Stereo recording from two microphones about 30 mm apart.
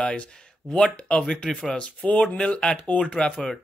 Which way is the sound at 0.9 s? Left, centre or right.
Left.